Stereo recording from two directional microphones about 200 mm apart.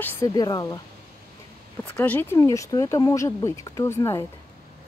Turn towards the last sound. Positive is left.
turn(degrees=15)  # may be behind; listen again after turning